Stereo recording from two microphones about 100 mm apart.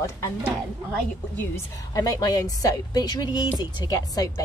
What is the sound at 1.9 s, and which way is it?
A woman's voice, 35° left (ahead or behind).